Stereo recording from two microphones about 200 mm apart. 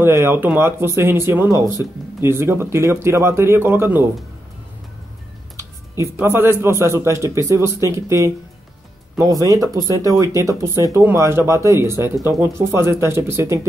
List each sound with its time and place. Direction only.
0.0 s speech: 10° right (ahead or behind)
5.6 s speech: 15° right (ahead or behind)